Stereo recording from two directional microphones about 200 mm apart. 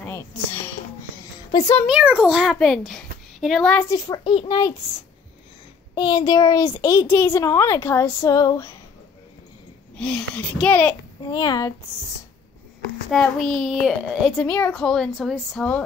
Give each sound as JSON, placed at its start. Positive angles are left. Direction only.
{"t": 0.0, "sound": "a sound", "side_deg": 10}
{"t": 1.9, "sound": "a child's voice", "side_deg": -5}
{"t": 5.9, "sound": "a child's voice", "side_deg": 20}
{"t": 9.9, "sound": "a child's voice", "side_deg": 5}
{"t": 11.2, "sound": "speech", "side_deg": 20}
{"t": 13.1, "sound": "a child's voice", "side_deg": 0}